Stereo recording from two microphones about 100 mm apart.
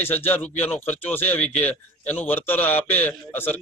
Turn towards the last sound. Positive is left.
turn(degrees=20)  # may be behind; listen again after turning